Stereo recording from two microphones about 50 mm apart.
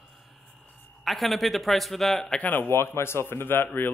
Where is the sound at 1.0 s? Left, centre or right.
Centre.